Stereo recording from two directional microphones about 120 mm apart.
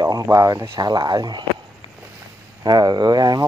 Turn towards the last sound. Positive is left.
turn(degrees=-35)  # may be behind; listen again after turning